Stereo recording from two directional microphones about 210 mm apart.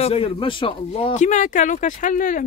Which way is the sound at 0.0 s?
25° left (ahead or behind).